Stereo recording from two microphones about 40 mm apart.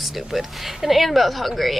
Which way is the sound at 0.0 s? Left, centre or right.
Centre.